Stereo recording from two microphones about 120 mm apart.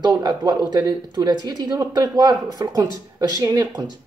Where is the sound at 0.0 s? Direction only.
35° right (ahead or behind).